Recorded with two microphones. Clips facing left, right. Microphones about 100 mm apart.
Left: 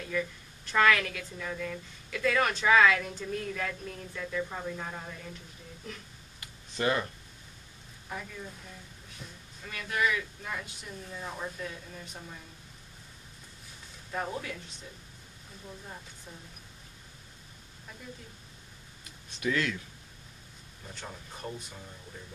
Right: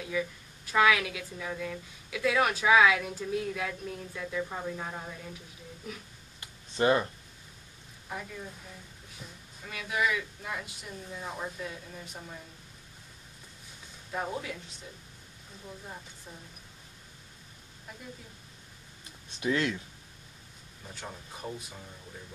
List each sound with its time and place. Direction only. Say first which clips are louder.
0.0 s a woman's voice: even; 5° right (ahead or behind)
6.4 s a sound: right 4 dB; 25° right (ahead or behind)
8.1 s speech: right 1 dB; 5° right (ahead or behind)
14.1 s speech: even; 5° right (ahead or behind)
19.4 s speech: right 1 dB; 25° right (ahead or behind)
20.9 s speech: right 1 dB; 5° right (ahead or behind)